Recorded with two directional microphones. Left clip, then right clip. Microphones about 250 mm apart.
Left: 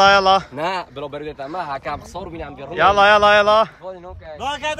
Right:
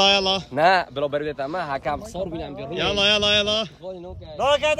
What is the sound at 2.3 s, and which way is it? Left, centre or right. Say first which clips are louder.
Speech: even; left.